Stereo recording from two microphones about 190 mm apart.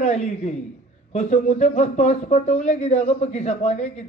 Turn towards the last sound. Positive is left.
turn(degrees=35)  # may be behind; listen again after turning